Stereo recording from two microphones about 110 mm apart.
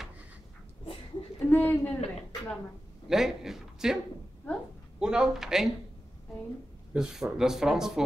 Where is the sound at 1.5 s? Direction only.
15° left (ahead or behind).